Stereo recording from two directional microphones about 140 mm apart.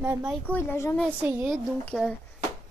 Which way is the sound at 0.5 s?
15° left (ahead or behind).